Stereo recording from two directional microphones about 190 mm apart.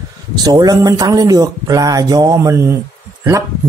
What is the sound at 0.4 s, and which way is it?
A man's voice, 20° right (ahead or behind).